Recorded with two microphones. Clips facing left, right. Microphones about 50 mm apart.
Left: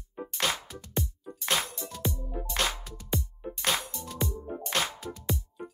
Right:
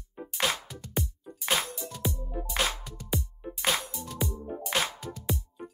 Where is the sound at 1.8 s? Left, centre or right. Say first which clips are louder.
Right 1 dB; left.